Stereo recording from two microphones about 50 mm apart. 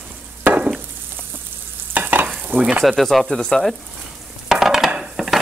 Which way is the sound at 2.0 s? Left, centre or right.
Right.